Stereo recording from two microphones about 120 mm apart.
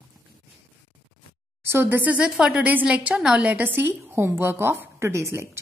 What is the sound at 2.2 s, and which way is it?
A woman's voice, 5° right (ahead or behind).